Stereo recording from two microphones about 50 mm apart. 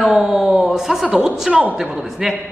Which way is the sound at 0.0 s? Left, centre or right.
Centre.